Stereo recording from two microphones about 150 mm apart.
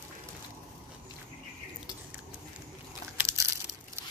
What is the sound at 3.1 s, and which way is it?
Crushing, 15° right (ahead or behind).